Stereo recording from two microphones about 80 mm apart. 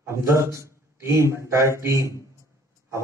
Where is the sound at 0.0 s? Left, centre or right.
Right.